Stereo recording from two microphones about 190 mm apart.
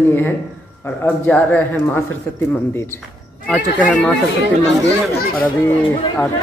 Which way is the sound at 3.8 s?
5° left (ahead or behind).